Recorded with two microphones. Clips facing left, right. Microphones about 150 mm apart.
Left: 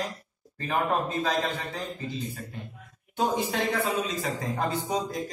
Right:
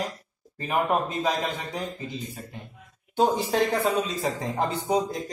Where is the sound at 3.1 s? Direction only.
30° right (ahead or behind).